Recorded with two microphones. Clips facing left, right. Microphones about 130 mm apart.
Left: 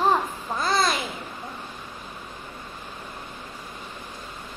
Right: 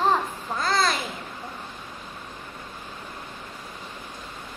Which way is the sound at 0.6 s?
15° left (ahead or behind).